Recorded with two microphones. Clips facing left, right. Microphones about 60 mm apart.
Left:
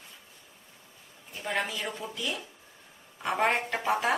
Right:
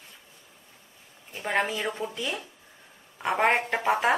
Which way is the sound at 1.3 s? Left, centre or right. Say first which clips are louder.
Right 4 dB; right.